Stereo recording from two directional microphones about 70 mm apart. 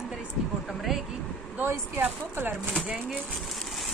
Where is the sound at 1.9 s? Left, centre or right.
Right.